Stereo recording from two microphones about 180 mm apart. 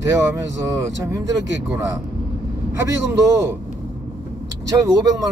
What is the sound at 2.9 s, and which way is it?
Speech, 15° right (ahead or behind).